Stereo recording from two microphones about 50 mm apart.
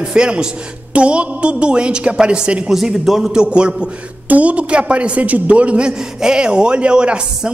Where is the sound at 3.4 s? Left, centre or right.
Right.